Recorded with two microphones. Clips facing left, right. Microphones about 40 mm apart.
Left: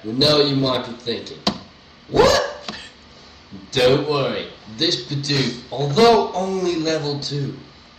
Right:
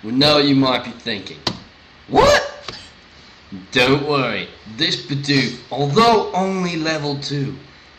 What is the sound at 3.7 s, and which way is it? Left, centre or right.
Speech, right.